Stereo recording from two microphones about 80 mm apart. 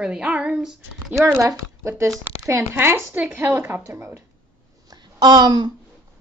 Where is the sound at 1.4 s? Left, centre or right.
Right.